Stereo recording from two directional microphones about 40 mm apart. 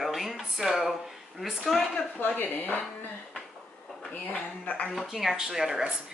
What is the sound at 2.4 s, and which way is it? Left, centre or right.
Speech, left.